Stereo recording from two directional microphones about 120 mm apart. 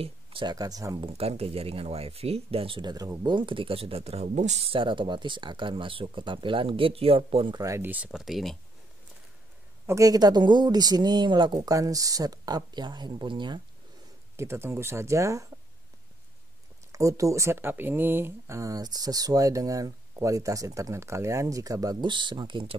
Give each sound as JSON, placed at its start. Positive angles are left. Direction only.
{"t": 0.0, "sound": "speech", "side_deg": -45}
{"t": 0.6, "sound": "speech", "side_deg": -30}
{"t": 1.0, "sound": "speech", "side_deg": -55}
{"t": 3.3, "sound": "speech", "side_deg": -45}
{"t": 4.7, "sound": "speech", "side_deg": -45}
{"t": 7.5, "sound": "speech", "side_deg": -25}
{"t": 9.8, "sound": "speech", "side_deg": -30}
{"t": 11.5, "sound": "speech", "side_deg": -30}
{"t": 14.3, "sound": "speech", "side_deg": -20}
{"t": 16.9, "sound": "speech", "side_deg": -25}